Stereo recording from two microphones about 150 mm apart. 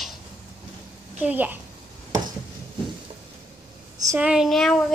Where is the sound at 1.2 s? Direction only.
10° right (ahead or behind).